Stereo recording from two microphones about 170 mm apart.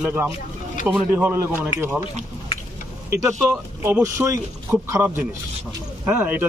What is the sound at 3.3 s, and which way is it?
Speech, 15° right (ahead or behind).